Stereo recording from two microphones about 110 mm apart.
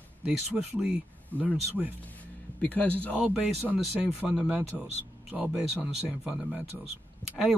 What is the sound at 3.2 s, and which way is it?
Speech, 10° right (ahead or behind).